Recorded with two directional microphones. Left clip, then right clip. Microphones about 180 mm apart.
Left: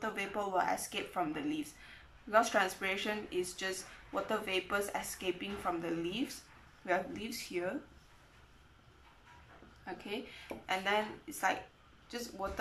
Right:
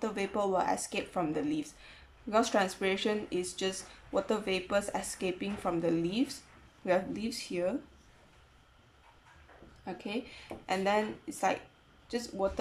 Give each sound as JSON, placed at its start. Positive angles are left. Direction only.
{"t": 0.0, "sound": "speech", "side_deg": -20}
{"t": 9.8, "sound": "speech", "side_deg": -20}